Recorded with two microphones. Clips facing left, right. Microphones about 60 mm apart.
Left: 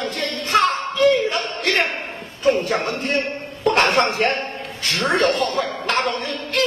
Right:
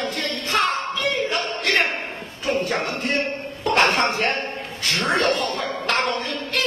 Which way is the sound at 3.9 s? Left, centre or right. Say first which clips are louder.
Left 3 dB; centre.